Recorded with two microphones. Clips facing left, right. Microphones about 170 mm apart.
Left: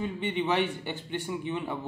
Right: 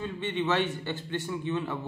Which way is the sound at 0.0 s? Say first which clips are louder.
Left 1 dB; 15° left (ahead or behind).